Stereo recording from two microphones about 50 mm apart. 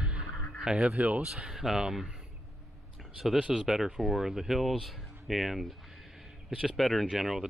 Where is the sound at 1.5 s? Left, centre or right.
Centre.